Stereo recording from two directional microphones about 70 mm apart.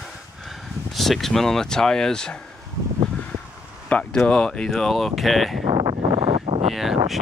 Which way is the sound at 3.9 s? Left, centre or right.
Centre.